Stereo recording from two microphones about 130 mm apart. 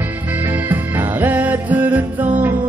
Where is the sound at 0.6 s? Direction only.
15° right (ahead or behind).